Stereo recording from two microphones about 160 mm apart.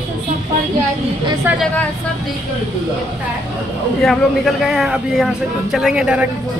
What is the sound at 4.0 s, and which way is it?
Speech, centre (ahead or behind).